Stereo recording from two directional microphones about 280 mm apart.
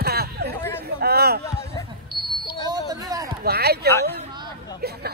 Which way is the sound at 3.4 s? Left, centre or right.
Right.